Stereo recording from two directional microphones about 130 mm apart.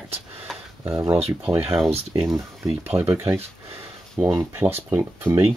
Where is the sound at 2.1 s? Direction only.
25° right (ahead or behind).